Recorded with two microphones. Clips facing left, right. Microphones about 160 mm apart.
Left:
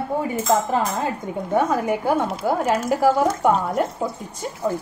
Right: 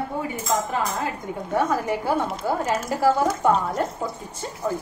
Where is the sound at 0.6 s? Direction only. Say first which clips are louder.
Left 4 dB; 25° left (ahead or behind).